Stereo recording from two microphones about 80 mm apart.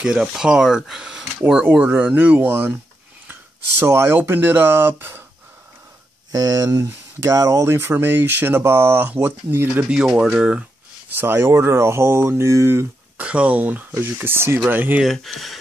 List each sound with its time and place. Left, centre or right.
0.0 s speech: centre; by 2.8 s right
3.8 s speech: right
6.3 s speech: right
7.6 s speech: right
9.8 s speech: centre
11.1 s speech: right
13.2 s speech: centre
15.0 s speech: centre